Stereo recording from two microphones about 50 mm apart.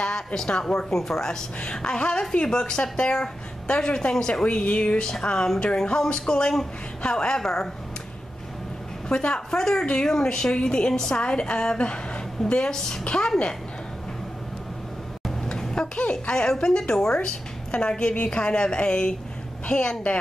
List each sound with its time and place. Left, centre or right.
0.0 s a woman's voice: centre
9.1 s a woman's voice: centre
15.2 s a woman's voice: centre